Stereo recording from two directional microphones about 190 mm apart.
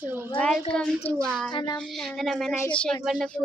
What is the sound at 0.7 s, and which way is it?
Speech, 5° left (ahead or behind).